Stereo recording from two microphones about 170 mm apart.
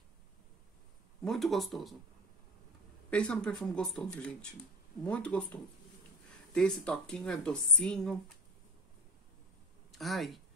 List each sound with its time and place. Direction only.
1.2 s speech: centre (ahead or behind)
3.1 s speech: 5° left (ahead or behind)
9.8 s speech: centre (ahead or behind)